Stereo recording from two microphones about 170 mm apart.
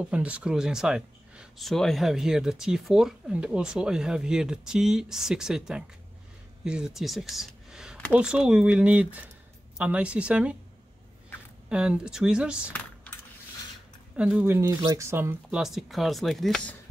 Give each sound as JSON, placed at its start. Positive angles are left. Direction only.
{"t": 0.0, "sound": "speech", "side_deg": -5}
{"t": 11.7, "sound": "speech", "side_deg": -5}
{"t": 14.1, "sound": "speech", "side_deg": -5}
{"t": 15.5, "sound": "speech", "side_deg": 0}